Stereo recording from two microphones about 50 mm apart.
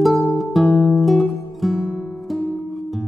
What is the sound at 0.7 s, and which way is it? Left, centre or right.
Music, left.